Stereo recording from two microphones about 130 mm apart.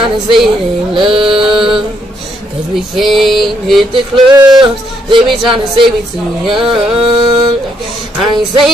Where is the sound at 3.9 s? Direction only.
35° right (ahead or behind).